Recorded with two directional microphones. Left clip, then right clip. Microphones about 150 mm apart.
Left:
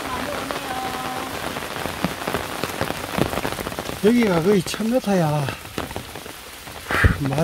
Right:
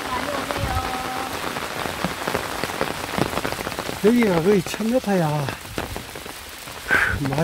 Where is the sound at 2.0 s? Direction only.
30° left (ahead or behind).